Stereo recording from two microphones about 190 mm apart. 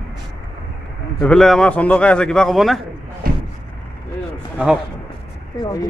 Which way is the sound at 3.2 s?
50° right (ahead or behind).